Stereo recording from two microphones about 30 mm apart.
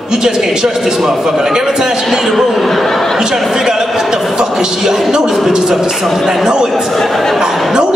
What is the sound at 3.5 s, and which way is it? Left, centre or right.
A man's voice, centre.